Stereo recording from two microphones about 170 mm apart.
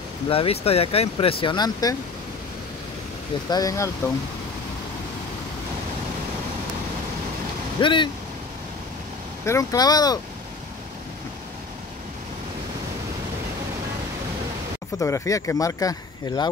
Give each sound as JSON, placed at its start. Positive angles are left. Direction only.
{"t": 0.3, "sound": "speech", "side_deg": 35}
{"t": 3.4, "sound": "speech", "side_deg": 20}
{"t": 7.8, "sound": "speech", "side_deg": 30}
{"t": 9.5, "sound": "speech", "side_deg": 20}
{"t": 15.0, "sound": "speech", "side_deg": 15}